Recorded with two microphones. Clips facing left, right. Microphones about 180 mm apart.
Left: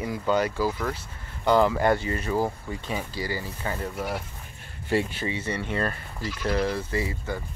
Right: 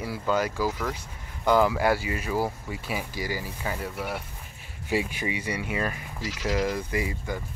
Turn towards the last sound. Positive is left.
turn(degrees=-15)  # may be behind; listen again after turning